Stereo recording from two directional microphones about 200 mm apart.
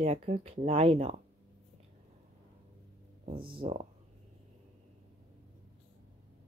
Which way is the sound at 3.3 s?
50° right (ahead or behind).